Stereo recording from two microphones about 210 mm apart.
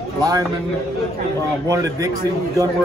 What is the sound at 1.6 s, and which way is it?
Speech, 15° right (ahead or behind).